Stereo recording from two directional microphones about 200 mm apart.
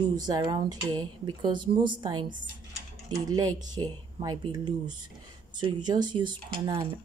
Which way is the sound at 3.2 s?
20° right (ahead or behind).